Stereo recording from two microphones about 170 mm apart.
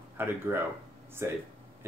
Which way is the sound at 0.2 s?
15° right (ahead or behind).